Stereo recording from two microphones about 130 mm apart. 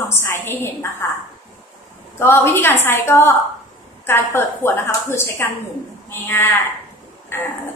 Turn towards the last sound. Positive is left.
turn(degrees=15)  # may be behind; listen again after turning